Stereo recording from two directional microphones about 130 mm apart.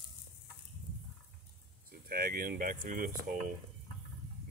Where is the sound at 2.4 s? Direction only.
90° right.